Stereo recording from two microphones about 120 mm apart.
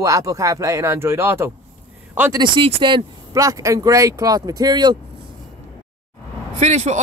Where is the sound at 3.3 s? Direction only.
25° right (ahead or behind).